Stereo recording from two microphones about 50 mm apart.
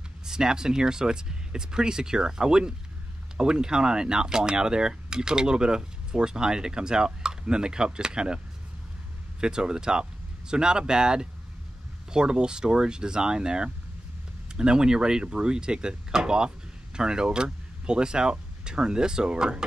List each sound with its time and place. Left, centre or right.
0.2 s speech: centre
9.4 s speech: centre